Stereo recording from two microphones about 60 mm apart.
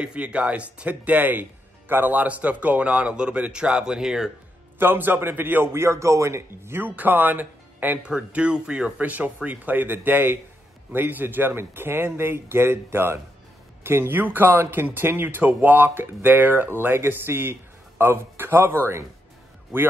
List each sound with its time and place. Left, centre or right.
0.0 s speech: centre
4.7 s speech: right
6.8 s speech: right
8.0 s speech: centre; by 18.8 s right